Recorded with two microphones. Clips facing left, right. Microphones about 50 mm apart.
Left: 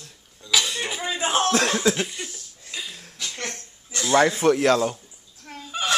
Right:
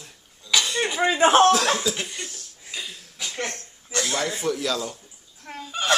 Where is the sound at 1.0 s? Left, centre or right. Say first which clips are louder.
Right 8 dB; right.